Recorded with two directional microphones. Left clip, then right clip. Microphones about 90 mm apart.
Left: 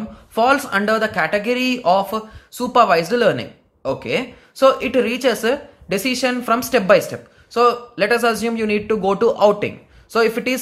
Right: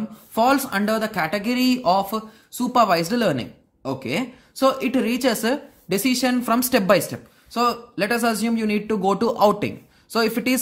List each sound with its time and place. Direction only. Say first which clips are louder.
0.3 s speech: left 3 dB; 45° right (ahead or behind)